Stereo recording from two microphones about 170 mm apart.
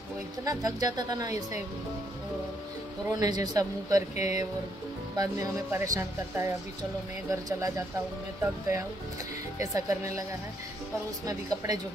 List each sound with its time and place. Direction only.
0.5 s speech: 20° right (ahead or behind)
3.1 s speech: 25° right (ahead or behind)
4.1 s speech: 40° left (ahead or behind)
5.1 s speech: 20° right (ahead or behind)
11.2 s speech: 20° right (ahead or behind)